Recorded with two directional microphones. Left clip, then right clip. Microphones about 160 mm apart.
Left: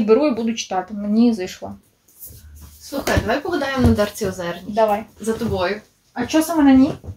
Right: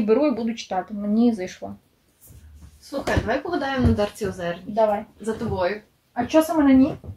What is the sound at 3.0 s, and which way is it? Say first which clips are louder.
Speech: left 4 dB; 15° left (ahead or behind).